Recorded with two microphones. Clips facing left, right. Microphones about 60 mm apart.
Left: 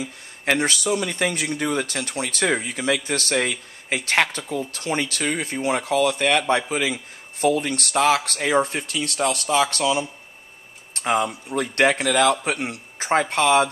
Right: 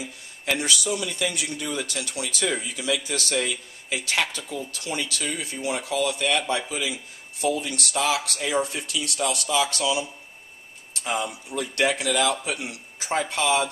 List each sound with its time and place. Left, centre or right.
0.0 s speech: left